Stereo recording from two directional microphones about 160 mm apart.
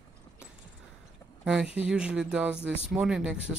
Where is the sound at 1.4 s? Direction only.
5° right (ahead or behind).